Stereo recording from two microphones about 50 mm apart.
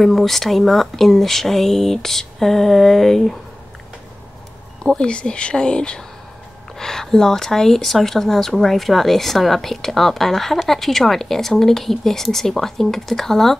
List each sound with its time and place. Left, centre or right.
0.0 s speech: centre
4.8 s speech: centre